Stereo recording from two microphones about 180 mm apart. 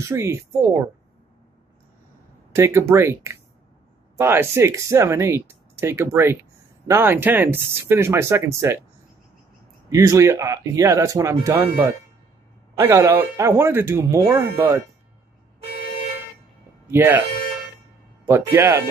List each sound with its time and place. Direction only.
0.0 s speech: 15° right (ahead or behind)
2.5 s speech: 15° right (ahead or behind)
9.8 s speech: 15° right (ahead or behind)
16.9 s speech: 10° right (ahead or behind)